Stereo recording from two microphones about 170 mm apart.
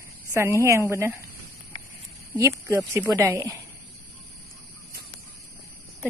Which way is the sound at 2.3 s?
15° right (ahead or behind).